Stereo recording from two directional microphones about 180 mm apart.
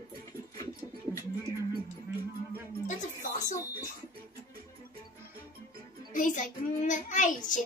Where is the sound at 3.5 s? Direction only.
15° left (ahead or behind).